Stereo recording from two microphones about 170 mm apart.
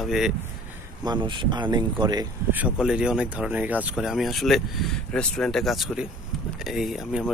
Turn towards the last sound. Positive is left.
turn(degrees=-5)  # may be behind; listen again after turning